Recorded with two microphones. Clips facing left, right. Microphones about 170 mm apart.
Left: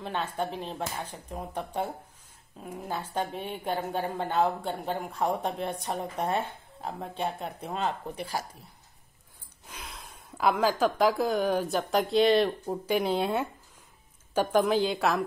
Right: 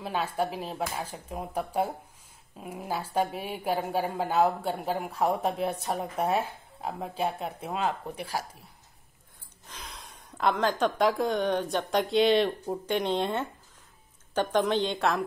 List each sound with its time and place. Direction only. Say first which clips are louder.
0.0 s a woman's voice: right 2 dB; 5° right (ahead or behind)
9.7 s a woman's voice: left 1 dB; 5° left (ahead or behind)